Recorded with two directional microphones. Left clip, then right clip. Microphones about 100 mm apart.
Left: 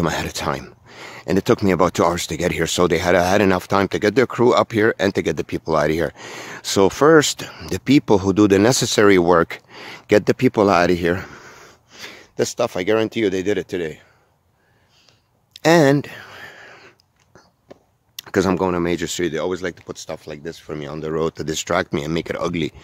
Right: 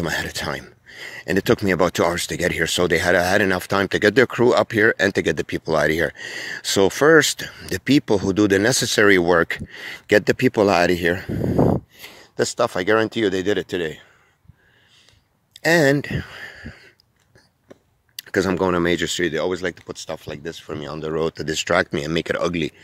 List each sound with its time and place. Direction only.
0.0 s speech: 30° left (ahead or behind)
11.1 s speech: 40° left (ahead or behind)
12.4 s speech: 5° left (ahead or behind); by 14.0 s 20° right (ahead or behind)
15.8 s speech: 15° left (ahead or behind)
18.3 s speech: 25° left (ahead or behind)
18.7 s speech: 10° right (ahead or behind)
19.0 s speech: 5° left (ahead or behind)
19.3 s speech: 10° right (ahead or behind)
20.2 s speech: 15° right (ahead or behind)
20.7 s speech: 10° left (ahead or behind)
21.6 s speech: 5° left (ahead or behind)
22.2 s speech: 5° right (ahead or behind)
22.5 s speech: 15° left (ahead or behind)